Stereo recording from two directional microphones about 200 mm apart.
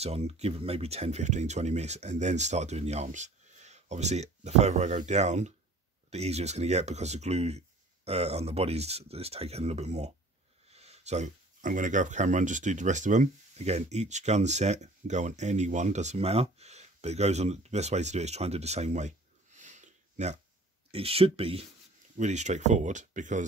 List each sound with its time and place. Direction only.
0.0 s speech: 30° right (ahead or behind)